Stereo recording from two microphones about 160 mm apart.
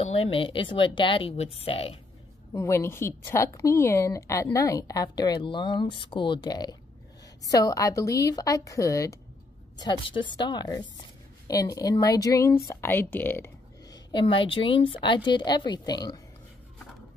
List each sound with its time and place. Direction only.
0.0 s speech: 40° left (ahead or behind)
2.5 s a woman's voice: 15° left (ahead or behind)